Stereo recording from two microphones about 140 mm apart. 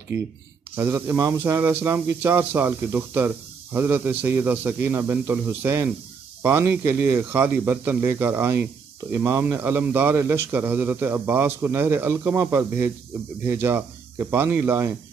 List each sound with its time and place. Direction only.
0.7 s speech: 15° right (ahead or behind)